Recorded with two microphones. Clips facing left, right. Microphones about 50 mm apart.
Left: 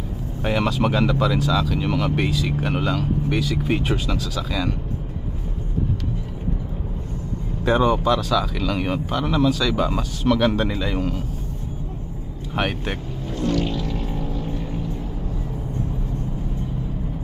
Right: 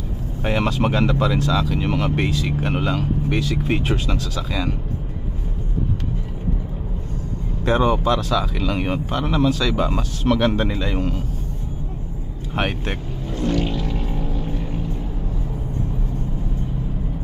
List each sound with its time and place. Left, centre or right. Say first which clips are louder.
0.4 s speech: even; centre
7.6 s speech: even; centre
12.5 s speech: even; centre
13.3 s vehicle: right 1 dB; right